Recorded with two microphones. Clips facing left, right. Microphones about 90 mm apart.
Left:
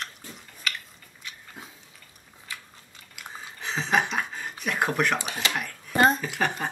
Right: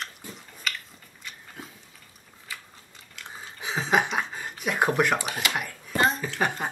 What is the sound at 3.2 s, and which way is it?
Chewing, 5° left (ahead or behind).